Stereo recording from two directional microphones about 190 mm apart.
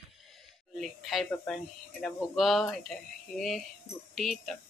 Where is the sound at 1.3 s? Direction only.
5° left (ahead or behind).